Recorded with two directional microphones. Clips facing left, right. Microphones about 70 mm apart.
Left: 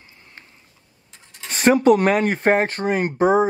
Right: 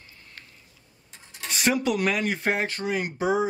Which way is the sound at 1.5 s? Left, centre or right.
Left.